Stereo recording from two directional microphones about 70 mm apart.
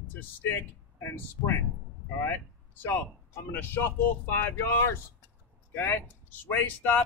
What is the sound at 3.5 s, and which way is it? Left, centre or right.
Speech, left.